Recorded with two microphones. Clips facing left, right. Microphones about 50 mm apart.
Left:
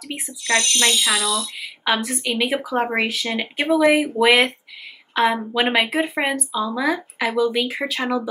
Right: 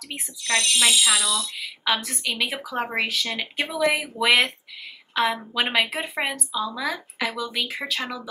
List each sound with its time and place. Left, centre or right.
0.1 s speech: centre
1.6 s speech: centre